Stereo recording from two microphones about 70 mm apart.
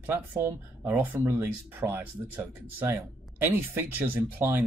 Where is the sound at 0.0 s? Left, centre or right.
Right.